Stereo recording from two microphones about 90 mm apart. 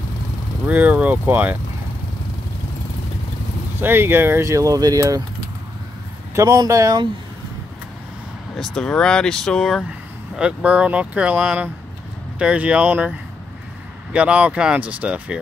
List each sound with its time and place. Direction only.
0.7 s speech: 15° right (ahead or behind)
3.8 s speech: 25° right (ahead or behind)
4.5 s speech: 40° right (ahead or behind)
6.3 s speech: 35° right (ahead or behind)
8.5 s speech: 10° left (ahead or behind)
10.3 s speech: 15° right (ahead or behind)
14.1 s speech: 15° right (ahead or behind)